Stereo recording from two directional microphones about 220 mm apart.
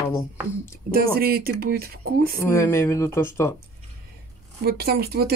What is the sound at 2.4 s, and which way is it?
Speech, 10° left (ahead or behind).